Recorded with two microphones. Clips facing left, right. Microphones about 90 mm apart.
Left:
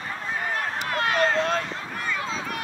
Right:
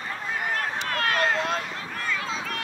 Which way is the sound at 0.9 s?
15° left (ahead or behind).